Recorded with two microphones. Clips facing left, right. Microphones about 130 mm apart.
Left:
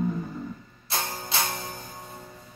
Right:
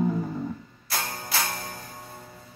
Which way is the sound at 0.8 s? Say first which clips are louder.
Even; 25° left (ahead or behind).